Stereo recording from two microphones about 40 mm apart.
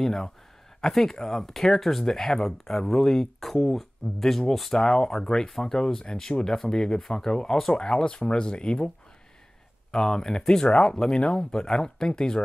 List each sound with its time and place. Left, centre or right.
0.0 s speech: centre
4.7 s speech: centre